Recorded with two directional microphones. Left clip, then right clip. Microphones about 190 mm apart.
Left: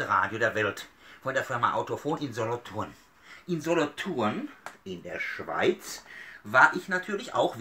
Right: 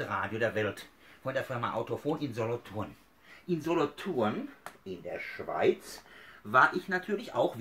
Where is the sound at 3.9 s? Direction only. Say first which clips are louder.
Left 2 dB; 60° left (ahead or behind).